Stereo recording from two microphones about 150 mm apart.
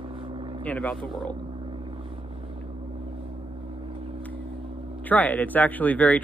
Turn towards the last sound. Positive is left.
turn(degrees=10)  # may be behind; listen again after turning